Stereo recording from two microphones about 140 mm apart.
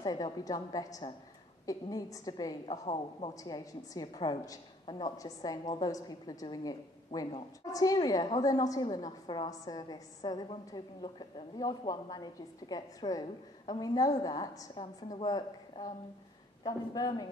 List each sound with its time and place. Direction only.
0.0 s a woman's voice: 30° left (ahead or behind)